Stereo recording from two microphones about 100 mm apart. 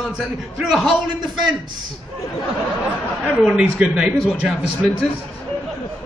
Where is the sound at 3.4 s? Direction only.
10° right (ahead or behind).